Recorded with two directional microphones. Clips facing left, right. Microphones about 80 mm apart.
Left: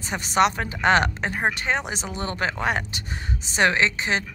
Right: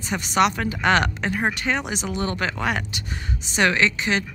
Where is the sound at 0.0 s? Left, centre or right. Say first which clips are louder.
Even; left.